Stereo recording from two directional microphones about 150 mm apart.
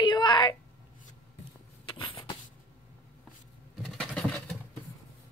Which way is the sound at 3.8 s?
Centre (ahead or behind).